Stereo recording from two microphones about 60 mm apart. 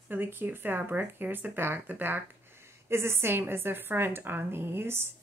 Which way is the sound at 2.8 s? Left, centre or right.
Right.